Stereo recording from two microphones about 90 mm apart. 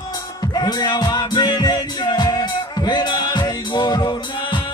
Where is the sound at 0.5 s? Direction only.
50° left (ahead or behind).